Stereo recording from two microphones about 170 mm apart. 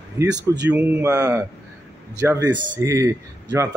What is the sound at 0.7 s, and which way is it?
Speech, 10° right (ahead or behind).